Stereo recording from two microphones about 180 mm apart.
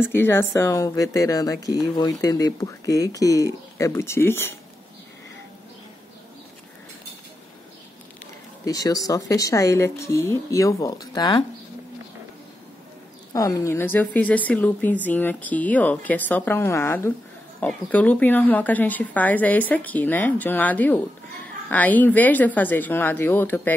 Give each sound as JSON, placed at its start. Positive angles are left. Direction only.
{"t": 0.0, "sound": "speech", "side_deg": 10}
{"t": 8.6, "sound": "speech", "side_deg": 20}
{"t": 13.3, "sound": "speech", "side_deg": 20}